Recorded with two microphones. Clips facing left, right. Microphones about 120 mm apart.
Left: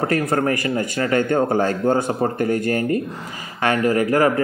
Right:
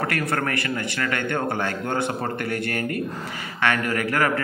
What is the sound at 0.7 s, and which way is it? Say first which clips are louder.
Speech: left 7 dB; 35° left (ahead or behind).